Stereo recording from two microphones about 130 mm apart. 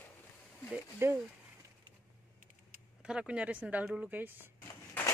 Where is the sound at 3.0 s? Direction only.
10° right (ahead or behind).